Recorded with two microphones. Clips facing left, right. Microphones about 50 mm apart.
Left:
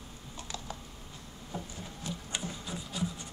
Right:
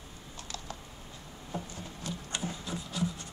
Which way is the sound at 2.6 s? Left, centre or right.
Centre.